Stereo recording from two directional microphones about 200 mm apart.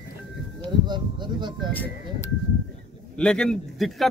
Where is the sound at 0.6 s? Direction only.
20° right (ahead or behind).